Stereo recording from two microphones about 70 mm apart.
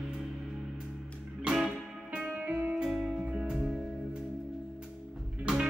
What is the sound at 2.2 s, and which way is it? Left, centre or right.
Music, centre.